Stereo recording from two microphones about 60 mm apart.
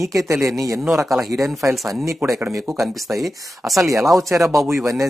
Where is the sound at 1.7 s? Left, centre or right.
Right.